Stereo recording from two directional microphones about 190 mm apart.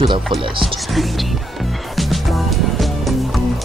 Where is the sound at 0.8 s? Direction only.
Centre (ahead or behind).